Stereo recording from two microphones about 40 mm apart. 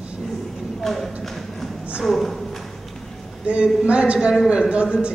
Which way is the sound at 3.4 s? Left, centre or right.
Right.